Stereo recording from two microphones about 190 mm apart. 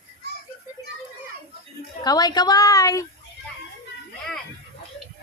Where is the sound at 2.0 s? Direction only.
20° left (ahead or behind).